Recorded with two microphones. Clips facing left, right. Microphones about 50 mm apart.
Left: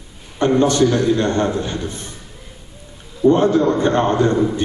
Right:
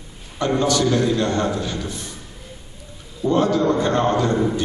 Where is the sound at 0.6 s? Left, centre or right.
Left.